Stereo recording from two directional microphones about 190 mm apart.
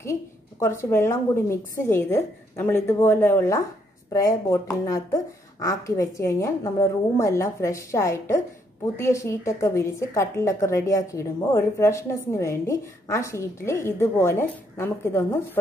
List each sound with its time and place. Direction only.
0.0 s a woman's voice: 15° left (ahead or behind)